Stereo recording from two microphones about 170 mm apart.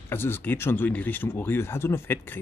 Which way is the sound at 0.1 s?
10° left (ahead or behind).